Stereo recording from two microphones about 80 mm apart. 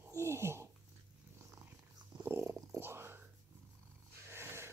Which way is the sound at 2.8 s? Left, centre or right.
Right.